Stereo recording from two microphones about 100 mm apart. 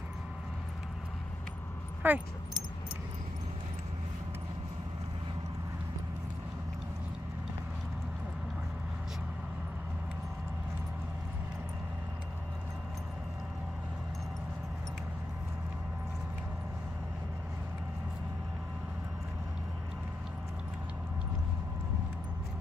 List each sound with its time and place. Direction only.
2.0 s speech: 20° right (ahead or behind)